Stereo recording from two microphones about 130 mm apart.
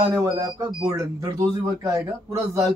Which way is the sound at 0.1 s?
25° right (ahead or behind).